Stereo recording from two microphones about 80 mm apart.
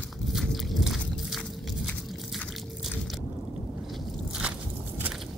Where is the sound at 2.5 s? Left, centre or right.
Centre.